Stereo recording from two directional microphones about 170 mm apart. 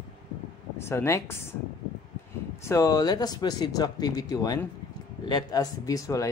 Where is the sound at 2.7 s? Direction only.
20° left (ahead or behind).